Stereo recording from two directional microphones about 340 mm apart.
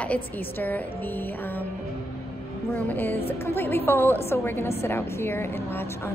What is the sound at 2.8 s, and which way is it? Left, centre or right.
A woman's voice, centre.